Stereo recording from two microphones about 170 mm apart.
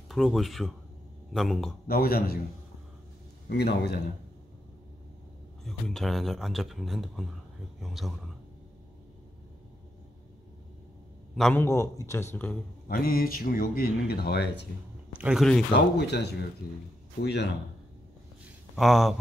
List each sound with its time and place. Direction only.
0.1 s a man's voice: centre (ahead or behind)
1.9 s speech: 65° left (ahead or behind)
3.4 s a man's voice: 70° left (ahead or behind)
5.7 s a man's voice: centre (ahead or behind)
11.3 s a man's voice: centre (ahead or behind)
11.6 s speech: 15° left (ahead or behind)
12.8 s speech: 60° left (ahead or behind); by 14.7 s 75° left (ahead or behind)
15.1 s a man's voice: 5° right (ahead or behind)
16.0 s a man's voice: 75° left (ahead or behind)
18.4 s a sound: centre (ahead or behind)